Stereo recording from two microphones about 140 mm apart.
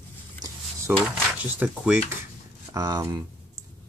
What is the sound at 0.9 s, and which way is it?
Speech, 15° right (ahead or behind).